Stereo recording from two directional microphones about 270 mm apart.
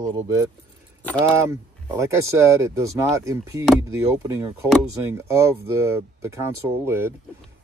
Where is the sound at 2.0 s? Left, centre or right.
Centre.